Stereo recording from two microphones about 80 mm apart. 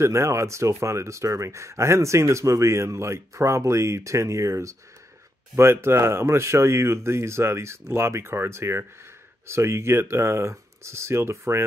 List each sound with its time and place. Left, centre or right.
0.0 s speech: right